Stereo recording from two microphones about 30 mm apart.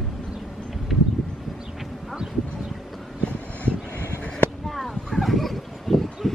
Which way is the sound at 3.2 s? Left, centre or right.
Left.